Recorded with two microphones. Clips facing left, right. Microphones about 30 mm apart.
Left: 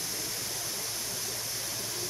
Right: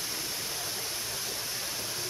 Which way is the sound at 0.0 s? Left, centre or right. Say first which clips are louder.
Right 1 dB; centre.